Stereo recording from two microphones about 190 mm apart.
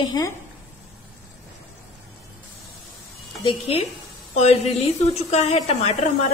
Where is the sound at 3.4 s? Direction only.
30° left (ahead or behind).